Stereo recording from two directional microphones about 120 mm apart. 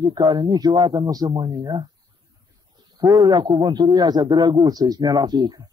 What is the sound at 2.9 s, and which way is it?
A man's voice, 35° right (ahead or behind).